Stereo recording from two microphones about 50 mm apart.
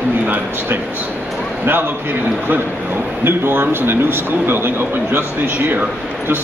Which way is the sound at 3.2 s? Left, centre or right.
Right.